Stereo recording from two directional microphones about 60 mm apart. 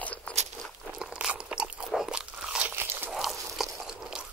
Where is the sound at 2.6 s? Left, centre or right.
Right.